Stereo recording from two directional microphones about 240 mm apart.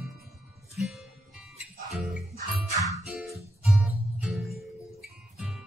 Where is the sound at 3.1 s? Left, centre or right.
Centre.